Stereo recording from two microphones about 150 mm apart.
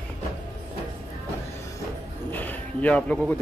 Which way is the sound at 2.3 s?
10° left (ahead or behind).